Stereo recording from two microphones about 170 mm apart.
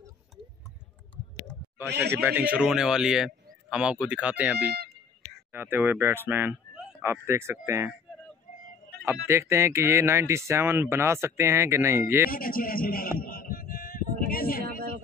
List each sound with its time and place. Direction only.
1.9 s speech: 75° right (ahead or behind)
2.1 s a man's voice: 10° right (ahead or behind)
8.5 s a sound: 50° left (ahead or behind)
9.0 s speech: 15° right (ahead or behind)
12.3 s speech: 55° left (ahead or behind)
13.2 s a sound: 55° left (ahead or behind)